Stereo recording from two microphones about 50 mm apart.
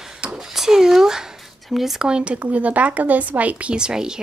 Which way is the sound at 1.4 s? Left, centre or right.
Centre.